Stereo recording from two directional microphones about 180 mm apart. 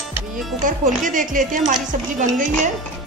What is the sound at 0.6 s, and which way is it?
Speech, 45° right (ahead or behind).